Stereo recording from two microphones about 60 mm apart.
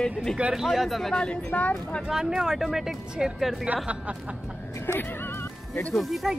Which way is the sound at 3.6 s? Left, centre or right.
Right.